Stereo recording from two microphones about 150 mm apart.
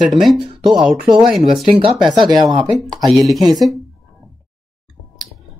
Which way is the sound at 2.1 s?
30° right (ahead or behind).